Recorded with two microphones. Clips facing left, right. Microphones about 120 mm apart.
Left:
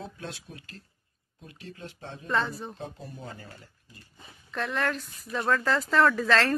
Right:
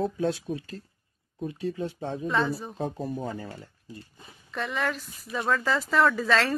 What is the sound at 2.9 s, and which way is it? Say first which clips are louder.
Speech: right 10 dB; 50° right (ahead or behind).